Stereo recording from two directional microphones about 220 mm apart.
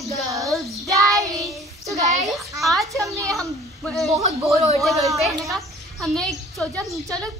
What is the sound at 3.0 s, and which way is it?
Speech, 15° right (ahead or behind).